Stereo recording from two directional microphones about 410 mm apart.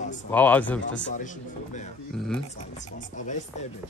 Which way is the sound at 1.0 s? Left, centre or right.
Centre.